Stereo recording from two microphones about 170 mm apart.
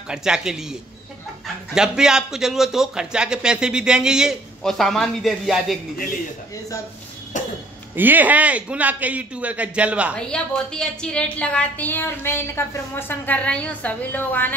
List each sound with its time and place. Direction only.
0.1 s a man's voice: 5° right (ahead or behind)
1.8 s a man's voice: 5° right (ahead or behind)
7.3 s speech: 45° left (ahead or behind)
7.9 s a man's voice: 10° right (ahead or behind)
10.3 s a woman's voice: 5° left (ahead or behind)